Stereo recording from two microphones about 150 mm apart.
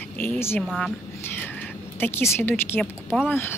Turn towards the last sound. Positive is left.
turn(degrees=15)  # may be behind; listen again after turning